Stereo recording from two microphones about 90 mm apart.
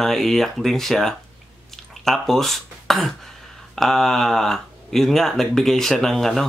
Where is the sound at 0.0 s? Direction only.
5° left (ahead or behind).